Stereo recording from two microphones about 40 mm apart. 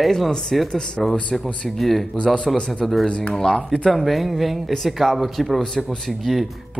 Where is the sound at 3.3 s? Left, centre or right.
Centre.